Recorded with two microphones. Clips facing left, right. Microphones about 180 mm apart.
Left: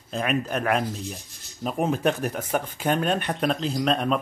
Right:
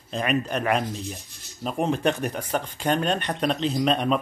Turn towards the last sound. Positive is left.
turn(degrees=0)  # may be behind; listen again after turning